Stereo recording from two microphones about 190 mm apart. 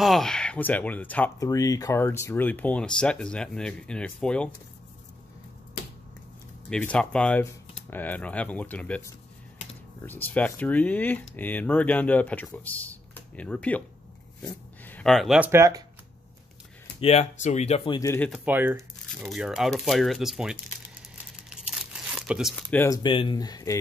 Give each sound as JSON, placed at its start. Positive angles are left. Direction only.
{"t": 0.0, "sound": "speech", "side_deg": 0}
{"t": 6.7, "sound": "speech", "side_deg": 5}
{"t": 17.0, "sound": "speech", "side_deg": 35}
{"t": 17.9, "sound": "speech", "side_deg": 15}
{"t": 18.3, "sound": "speech", "side_deg": -10}
{"t": 21.5, "sound": "crumpling", "side_deg": -5}
{"t": 22.7, "sound": "speech", "side_deg": 10}
{"t": 23.0, "sound": "speech", "side_deg": 25}